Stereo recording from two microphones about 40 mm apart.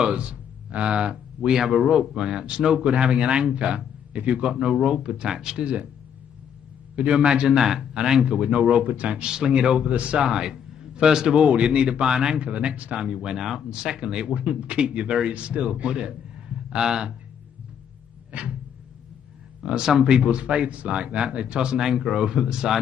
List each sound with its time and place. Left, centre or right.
0.0 s speech: right
5.6 s speech: right
7.0 s speech: right
8.8 s speech: right
9.1 s speech: right
10.2 s a man's voice: centre
11.4 s speech: right
12.4 s speech: right
13.4 s speech: centre; by 15.6 s right
15.7 s a sound: right
16.8 s speech: centre
18.3 s a sound: right
19.6 s speech: right